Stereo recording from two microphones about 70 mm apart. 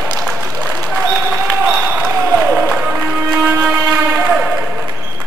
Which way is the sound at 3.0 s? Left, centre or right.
Right.